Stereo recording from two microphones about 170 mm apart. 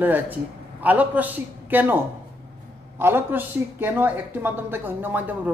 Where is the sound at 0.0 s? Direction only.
10° right (ahead or behind).